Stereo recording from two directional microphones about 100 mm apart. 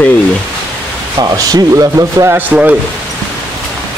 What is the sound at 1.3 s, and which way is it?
Speech, 35° right (ahead or behind).